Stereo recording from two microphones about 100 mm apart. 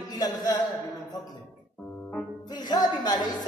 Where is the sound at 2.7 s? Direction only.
45° left (ahead or behind).